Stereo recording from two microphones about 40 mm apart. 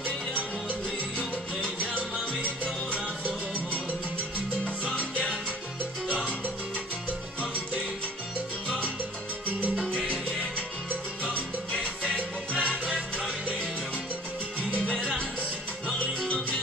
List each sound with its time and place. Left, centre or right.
0.3 s music: right
2.6 s music: right
5.1 s salsa music: right
11.8 s music: right